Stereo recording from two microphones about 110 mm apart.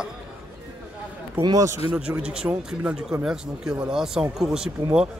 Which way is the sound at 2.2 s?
10° right (ahead or behind).